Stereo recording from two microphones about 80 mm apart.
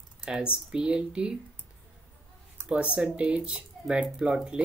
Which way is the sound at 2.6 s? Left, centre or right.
Centre.